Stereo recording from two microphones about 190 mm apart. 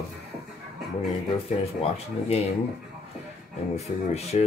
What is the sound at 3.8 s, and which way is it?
Speech, 35° left (ahead or behind).